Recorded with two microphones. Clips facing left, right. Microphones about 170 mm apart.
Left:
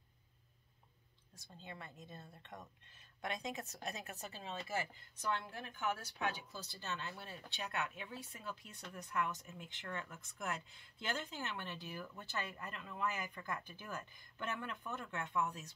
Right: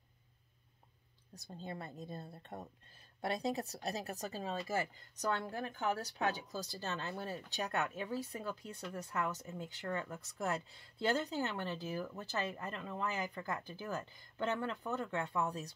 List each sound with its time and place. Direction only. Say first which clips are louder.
1.3 s speech: right 8 dB; 35° right (ahead or behind)